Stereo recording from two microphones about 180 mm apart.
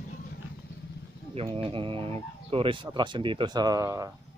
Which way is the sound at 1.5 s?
30° right (ahead or behind).